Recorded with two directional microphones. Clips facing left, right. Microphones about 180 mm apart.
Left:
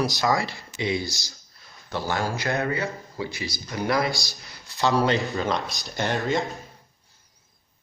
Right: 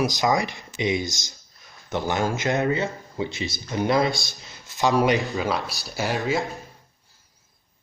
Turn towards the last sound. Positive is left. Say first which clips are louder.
# even
turn(degrees=-5)  # may be behind; listen again after turning